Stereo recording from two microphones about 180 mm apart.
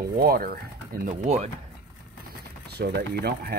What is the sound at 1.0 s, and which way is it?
Speech, 40° right (ahead or behind).